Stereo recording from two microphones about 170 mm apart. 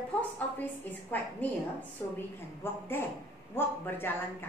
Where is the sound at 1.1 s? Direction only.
10° left (ahead or behind).